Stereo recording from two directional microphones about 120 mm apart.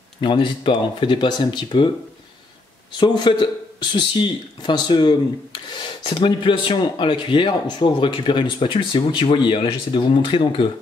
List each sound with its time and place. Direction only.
0.2 s speech: 40° left (ahead or behind)
2.9 s speech: 40° left (ahead or behind)